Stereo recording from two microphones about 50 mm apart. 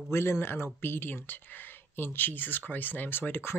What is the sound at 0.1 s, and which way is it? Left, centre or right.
Speech, left.